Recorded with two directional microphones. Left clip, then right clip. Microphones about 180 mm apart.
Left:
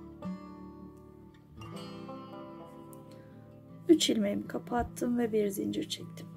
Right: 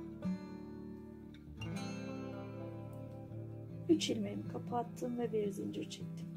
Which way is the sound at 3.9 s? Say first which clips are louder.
Left 8 dB; 40° left (ahead or behind).